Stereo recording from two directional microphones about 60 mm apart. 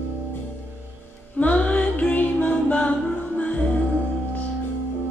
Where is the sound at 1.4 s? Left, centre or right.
Left.